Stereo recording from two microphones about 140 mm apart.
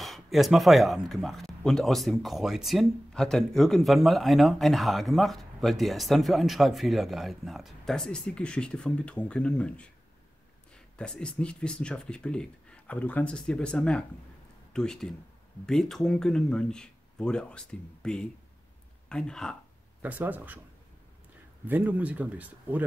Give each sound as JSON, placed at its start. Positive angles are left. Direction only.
{"t": 0.0, "sound": "speech", "side_deg": 0}
{"t": 20.0, "sound": "speech", "side_deg": -10}
{"t": 21.6, "sound": "speech", "side_deg": -10}